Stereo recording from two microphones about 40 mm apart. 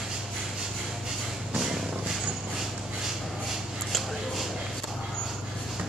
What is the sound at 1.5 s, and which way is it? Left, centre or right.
Vehicle, right.